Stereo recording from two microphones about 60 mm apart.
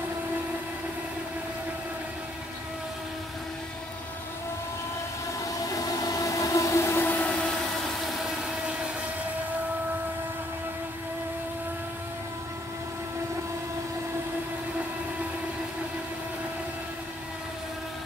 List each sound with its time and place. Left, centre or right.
5.4 s train: left
7.1 s train: left